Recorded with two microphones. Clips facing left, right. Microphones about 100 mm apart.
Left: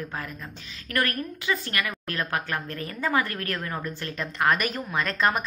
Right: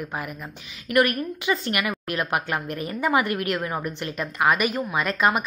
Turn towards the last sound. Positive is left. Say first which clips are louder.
# right 3 dB
turn(degrees=-10)  # may be behind; listen again after turning